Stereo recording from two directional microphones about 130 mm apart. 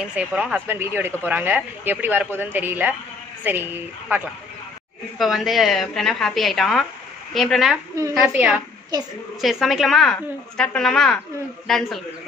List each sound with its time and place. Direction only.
0.0 s speech: 5° right (ahead or behind)
0.7 s speech: 15° right (ahead or behind)
5.2 s a woman's voice: centre (ahead or behind)
8.0 s a woman's voice: 25° right (ahead or behind)
8.3 s speech: 15° right (ahead or behind)
9.4 s a woman's voice: centre (ahead or behind)